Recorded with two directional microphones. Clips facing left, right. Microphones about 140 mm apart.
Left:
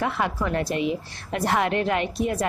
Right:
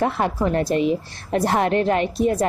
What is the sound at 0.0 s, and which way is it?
A woman's voice, 35° right (ahead or behind).